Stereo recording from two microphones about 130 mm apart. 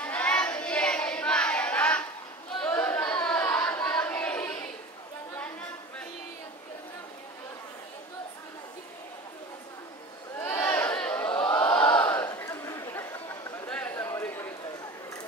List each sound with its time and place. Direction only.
0.0 s child singing: 10° left (ahead or behind)
2.6 s carnatic music: 15° left (ahead or behind)
3.4 s choir: 15° left (ahead or behind)
10.4 s crowd: 15° left (ahead or behind)
13.7 s a sound: 10° left (ahead or behind)